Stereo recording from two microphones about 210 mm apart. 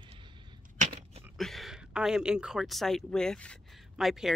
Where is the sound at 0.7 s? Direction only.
35° right (ahead or behind).